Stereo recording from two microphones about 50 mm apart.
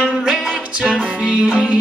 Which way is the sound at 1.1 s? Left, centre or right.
Right.